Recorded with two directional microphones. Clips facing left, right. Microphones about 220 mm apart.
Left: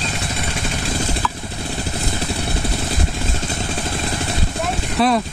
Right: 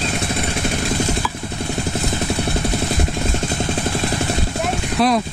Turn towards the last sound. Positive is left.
turn(degrees=0)  # may be behind; listen again after turning